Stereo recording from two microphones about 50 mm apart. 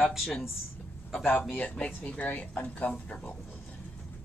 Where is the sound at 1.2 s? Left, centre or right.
Left.